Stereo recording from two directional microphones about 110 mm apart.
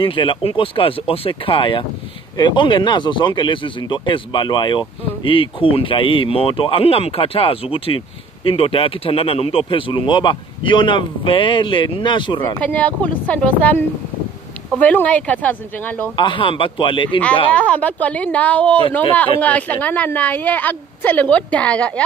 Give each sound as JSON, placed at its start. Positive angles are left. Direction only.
{"t": 0.0, "sound": "speech", "side_deg": 50}
{"t": 12.5, "sound": "a woman's voice", "side_deg": 15}
{"t": 14.8, "sound": "a woman's voice", "side_deg": 15}
{"t": 16.2, "sound": "speech", "side_deg": 50}
{"t": 17.5, "sound": "a woman's voice", "side_deg": 10}